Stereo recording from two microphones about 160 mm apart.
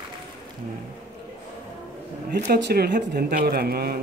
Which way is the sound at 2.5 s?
75° right (ahead or behind).